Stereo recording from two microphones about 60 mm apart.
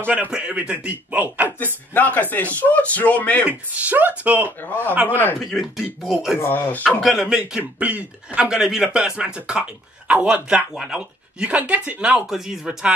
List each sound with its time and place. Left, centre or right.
0.0 s speech: right
2.0 s a man's voice: left
3.4 s speech: right
4.6 s a man's voice: left
5.4 s speech: centre
6.5 s a man's voice: left
7.0 s speech: centre
7.2 s a man's voice: centre
7.8 s speech: right
8.5 s a man's voice: centre
12.3 s a man's voice: centre